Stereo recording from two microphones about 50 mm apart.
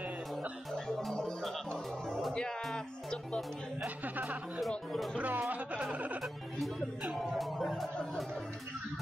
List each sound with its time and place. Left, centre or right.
0.8 s music: centre
3.8 s chuckle: right
4.6 s music: centre
5.2 s music: right
6.2 s music: centre